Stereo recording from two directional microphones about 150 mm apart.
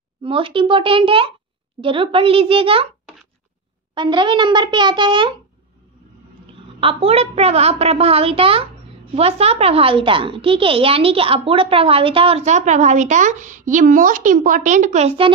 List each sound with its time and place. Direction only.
0.2 s a woman's voice: 35° right (ahead or behind)
3.9 s a woman's voice: 30° right (ahead or behind)
6.8 s a woman's voice: 40° right (ahead or behind)